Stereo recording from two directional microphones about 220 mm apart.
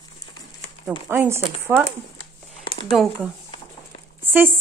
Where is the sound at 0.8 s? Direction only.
10° right (ahead or behind).